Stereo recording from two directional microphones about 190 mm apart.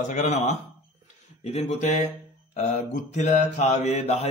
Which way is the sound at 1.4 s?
35° left (ahead or behind).